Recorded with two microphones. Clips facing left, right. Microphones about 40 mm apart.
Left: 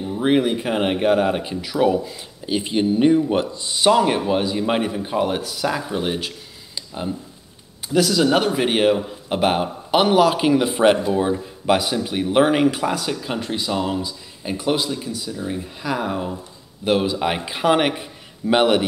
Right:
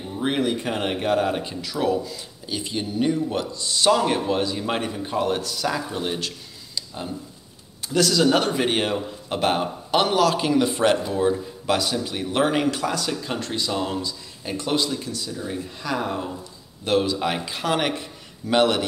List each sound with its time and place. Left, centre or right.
0.0 s speech: centre